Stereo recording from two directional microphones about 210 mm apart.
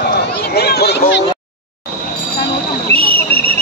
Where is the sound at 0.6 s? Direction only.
50° left (ahead or behind).